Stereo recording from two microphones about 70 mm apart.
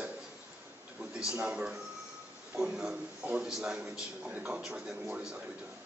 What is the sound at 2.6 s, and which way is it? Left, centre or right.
A man's voice, centre.